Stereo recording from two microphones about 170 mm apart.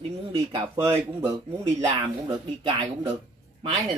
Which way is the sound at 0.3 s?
30° right (ahead or behind).